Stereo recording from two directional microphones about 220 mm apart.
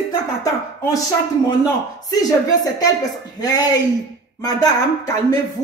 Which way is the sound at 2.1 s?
15° left (ahead or behind).